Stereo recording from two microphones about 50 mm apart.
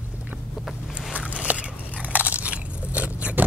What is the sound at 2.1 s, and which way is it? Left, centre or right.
Crunch, right.